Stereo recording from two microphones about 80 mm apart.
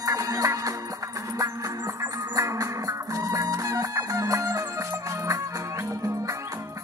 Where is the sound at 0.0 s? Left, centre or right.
Right.